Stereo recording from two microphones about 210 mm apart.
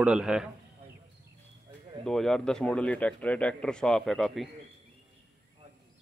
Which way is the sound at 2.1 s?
Centre (ahead or behind).